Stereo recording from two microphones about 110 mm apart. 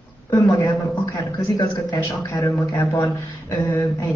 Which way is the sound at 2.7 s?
20° left (ahead or behind).